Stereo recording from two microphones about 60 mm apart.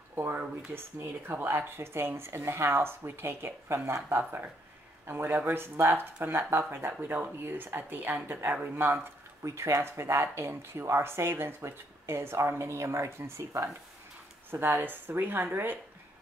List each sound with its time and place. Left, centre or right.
0.1 s a sound: right
0.7 s speech: right
1.5 s speech: right
9.4 s speech: right
14.8 s speech: right